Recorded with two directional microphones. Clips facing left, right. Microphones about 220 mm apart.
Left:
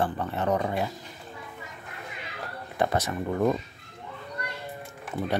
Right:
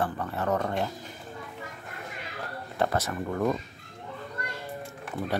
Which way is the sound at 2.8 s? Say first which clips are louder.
Left 1 dB; 15° left (ahead or behind).